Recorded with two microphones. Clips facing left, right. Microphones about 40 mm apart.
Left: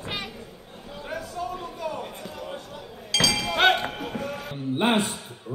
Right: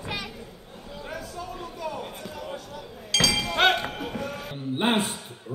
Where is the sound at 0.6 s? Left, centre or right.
Centre.